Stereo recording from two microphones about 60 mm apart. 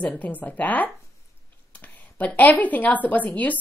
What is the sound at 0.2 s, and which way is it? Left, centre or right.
A woman's voice, left.